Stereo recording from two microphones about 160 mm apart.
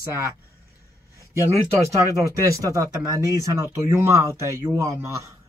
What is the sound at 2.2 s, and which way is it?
Speech, 20° right (ahead or behind).